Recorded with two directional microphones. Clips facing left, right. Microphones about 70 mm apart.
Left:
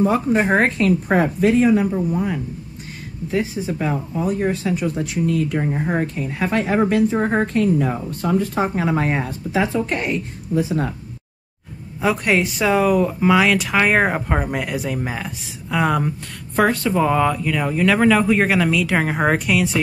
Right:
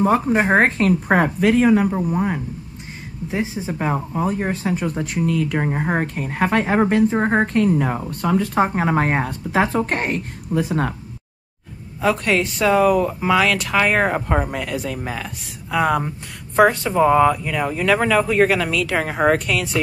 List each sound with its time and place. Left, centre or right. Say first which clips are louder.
0.0 s speech: even; right
3.3 s speech: left 2 dB; right
4.8 s speech: left 1 dB; right
7.4 s speech: even; right
8.6 s speech: right 1 dB; right
9.2 s speech: right 2 dB; right
12.0 s speech: even; centre
15.4 s speech: right 1 dB; centre
16.6 s speech: right 2 dB; centre